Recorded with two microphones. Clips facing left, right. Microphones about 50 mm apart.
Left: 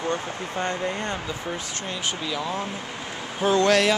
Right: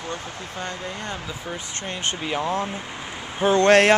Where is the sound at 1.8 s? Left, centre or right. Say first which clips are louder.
Right 3 dB; right.